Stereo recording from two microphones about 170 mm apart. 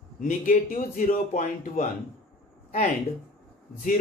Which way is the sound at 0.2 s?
55° left (ahead or behind).